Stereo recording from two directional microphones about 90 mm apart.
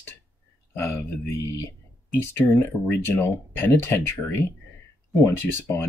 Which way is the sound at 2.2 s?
25° left (ahead or behind).